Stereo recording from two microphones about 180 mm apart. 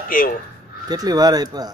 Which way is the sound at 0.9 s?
20° right (ahead or behind).